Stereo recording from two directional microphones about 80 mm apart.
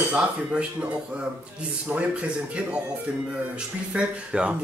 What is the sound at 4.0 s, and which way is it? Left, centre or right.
Speech, centre.